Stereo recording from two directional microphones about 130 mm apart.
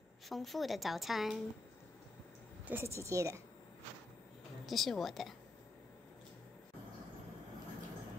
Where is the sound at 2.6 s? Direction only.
15° right (ahead or behind).